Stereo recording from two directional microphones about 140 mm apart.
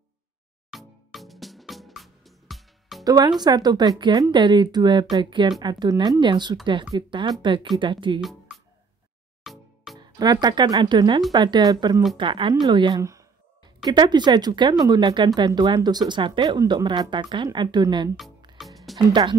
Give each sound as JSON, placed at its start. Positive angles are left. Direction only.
{"t": 0.7, "sound": "music", "side_deg": 0}
{"t": 3.0, "sound": "speech", "side_deg": -30}
{"t": 8.2, "sound": "music", "side_deg": 0}
{"t": 9.9, "sound": "speech", "side_deg": -30}
{"t": 13.0, "sound": "a sound", "side_deg": -20}
{"t": 13.7, "sound": "speech", "side_deg": -30}
{"t": 18.6, "sound": "music", "side_deg": 0}
{"t": 19.0, "sound": "speech", "side_deg": -35}